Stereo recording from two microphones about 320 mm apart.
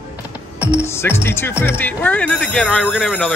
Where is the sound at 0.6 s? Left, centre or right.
Centre.